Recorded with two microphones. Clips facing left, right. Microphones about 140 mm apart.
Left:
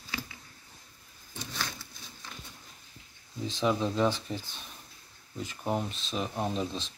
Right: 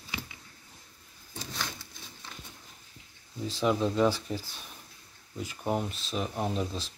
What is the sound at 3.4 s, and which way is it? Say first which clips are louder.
Speech: right 1 dB; 5° right (ahead or behind).